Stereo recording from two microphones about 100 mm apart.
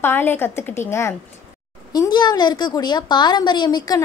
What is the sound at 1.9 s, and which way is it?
A woman's voice, 45° left (ahead or behind).